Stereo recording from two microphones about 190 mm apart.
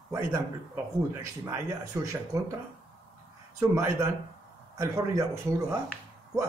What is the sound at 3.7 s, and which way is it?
Speech, 15° right (ahead or behind).